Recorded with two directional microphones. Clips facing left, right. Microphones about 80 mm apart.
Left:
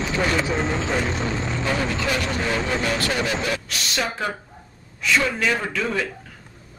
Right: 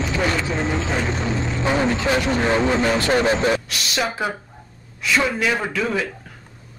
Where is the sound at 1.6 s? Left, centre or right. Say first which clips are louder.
Right 5 dB; right.